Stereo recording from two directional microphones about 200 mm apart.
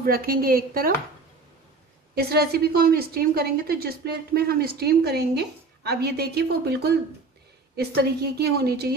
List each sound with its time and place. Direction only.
0.0 s a woman's voice: 45° right (ahead or behind)
2.1 s a woman's voice: 55° right (ahead or behind)